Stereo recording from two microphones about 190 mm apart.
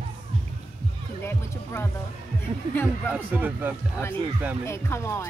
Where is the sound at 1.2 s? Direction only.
15° left (ahead or behind).